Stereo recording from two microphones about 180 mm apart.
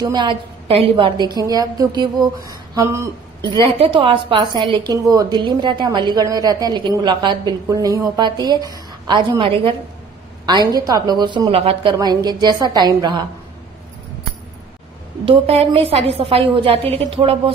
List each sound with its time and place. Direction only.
0.0 s a woman's voice: 25° right (ahead or behind)
15.2 s a woman's voice: 35° right (ahead or behind)